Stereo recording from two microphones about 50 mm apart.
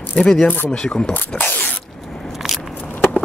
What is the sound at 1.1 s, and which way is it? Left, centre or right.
Speech, left.